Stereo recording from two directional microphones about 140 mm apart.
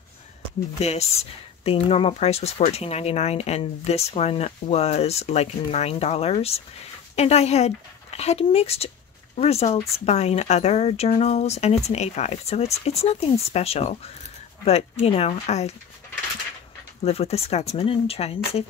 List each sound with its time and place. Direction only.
0.7 s speech: 50° left (ahead or behind)
17.0 s speech: 45° left (ahead or behind)